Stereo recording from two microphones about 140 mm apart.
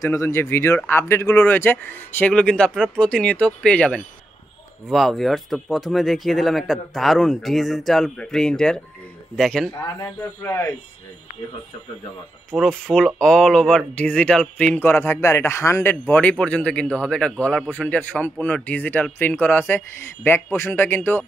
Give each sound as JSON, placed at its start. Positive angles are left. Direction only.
{"t": 0.0, "sound": "speech", "side_deg": 20}
{"t": 9.8, "sound": "speech", "side_deg": 20}
{"t": 12.4, "sound": "speech", "side_deg": 5}